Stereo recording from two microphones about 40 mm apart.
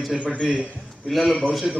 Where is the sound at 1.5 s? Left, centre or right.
Centre.